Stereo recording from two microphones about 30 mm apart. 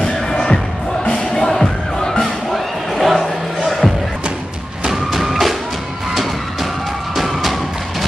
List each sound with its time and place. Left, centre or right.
0.0 s music: centre
2.5 s music: centre
5.1 s music: centre
7.2 s music: centre